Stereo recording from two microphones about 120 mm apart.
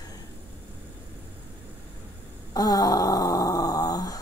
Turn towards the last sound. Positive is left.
turn(degrees=30)  # may be behind; listen again after turning